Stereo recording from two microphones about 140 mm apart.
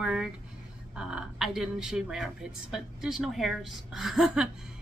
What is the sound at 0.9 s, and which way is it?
Speech, 5° right (ahead or behind).